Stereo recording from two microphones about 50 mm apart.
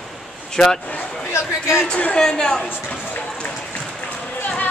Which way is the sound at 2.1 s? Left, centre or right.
Centre.